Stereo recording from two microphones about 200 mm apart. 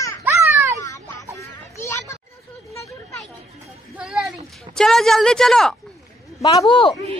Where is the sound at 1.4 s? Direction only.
15° left (ahead or behind).